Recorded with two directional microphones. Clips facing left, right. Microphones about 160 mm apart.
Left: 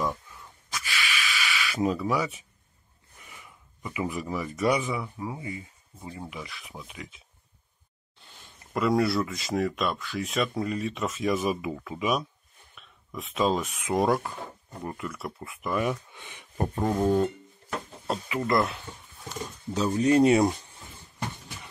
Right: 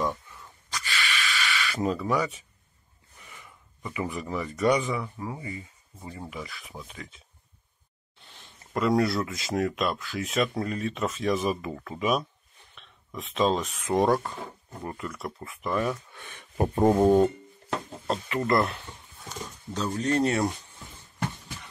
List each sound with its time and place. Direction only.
0.7 s a sound: 5° left (ahead or behind)
3.8 s speech: 10° left (ahead or behind)
8.7 s speech: centre (ahead or behind)
16.5 s a sound: 5° right (ahead or behind)
16.9 s rub: 20° right (ahead or behind)
18.0 s speech: 5° left (ahead or behind)